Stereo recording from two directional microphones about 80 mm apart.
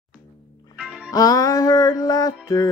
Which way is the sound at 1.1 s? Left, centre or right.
Left.